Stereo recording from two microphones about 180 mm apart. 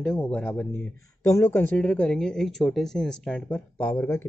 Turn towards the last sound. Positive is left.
turn(degrees=15)  # may be behind; listen again after turning